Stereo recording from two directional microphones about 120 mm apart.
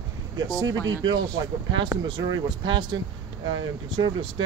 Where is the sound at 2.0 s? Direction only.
40° right (ahead or behind).